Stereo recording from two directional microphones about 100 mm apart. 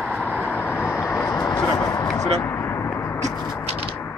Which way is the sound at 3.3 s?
30° left (ahead or behind).